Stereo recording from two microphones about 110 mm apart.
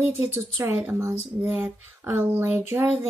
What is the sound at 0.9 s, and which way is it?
Speech, 25° right (ahead or behind).